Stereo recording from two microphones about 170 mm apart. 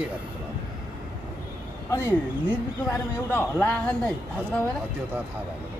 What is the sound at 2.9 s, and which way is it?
Speech, 10° left (ahead or behind).